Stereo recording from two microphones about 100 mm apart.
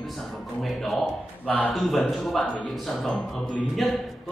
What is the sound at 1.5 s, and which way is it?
Speech, 10° left (ahead or behind).